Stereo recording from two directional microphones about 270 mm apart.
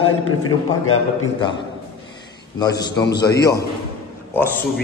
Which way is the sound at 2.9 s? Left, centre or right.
Left.